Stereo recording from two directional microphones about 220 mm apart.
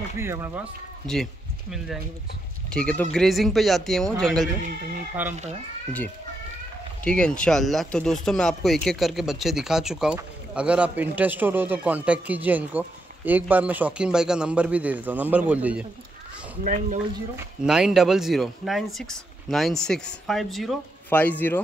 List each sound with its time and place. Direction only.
0.2 s speech: 10° right (ahead or behind)
1.0 s speech: centre (ahead or behind)
7.1 s speech: 5° left (ahead or behind)
16.6 s speech: 35° right (ahead or behind)
17.6 s speech: 5° right (ahead or behind)